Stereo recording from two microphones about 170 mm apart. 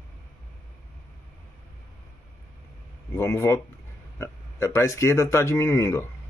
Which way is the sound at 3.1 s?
15° left (ahead or behind).